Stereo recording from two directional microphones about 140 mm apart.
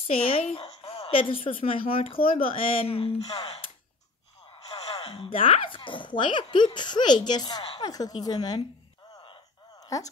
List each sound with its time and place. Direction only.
0.0 s a woman's voice: 40° left (ahead or behind)
3.4 s a sound: 45° left (ahead or behind)
5.1 s speech: 40° left (ahead or behind)
7.9 s speech: 25° left (ahead or behind)
9.2 s a sound: 35° left (ahead or behind)
9.8 s speech: 25° left (ahead or behind)